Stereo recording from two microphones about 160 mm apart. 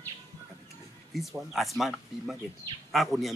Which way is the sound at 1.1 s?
Centre (ahead or behind).